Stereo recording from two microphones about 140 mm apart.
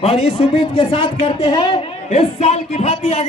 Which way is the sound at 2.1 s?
50° left (ahead or behind).